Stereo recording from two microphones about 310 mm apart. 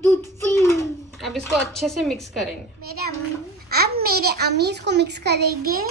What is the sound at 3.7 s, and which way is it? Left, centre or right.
A child's voice, right.